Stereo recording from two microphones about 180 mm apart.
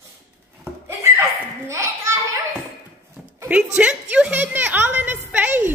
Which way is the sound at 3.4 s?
5° right (ahead or behind).